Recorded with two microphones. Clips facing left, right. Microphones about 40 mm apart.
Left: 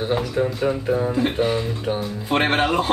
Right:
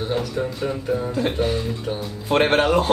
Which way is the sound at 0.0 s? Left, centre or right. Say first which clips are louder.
Left 3 dB; centre.